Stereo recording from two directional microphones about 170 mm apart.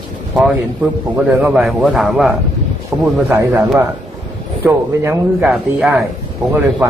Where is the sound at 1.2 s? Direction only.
5° right (ahead or behind).